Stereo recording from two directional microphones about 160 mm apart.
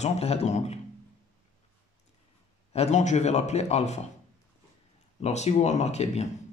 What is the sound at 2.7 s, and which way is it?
Speech, 45° left (ahead or behind).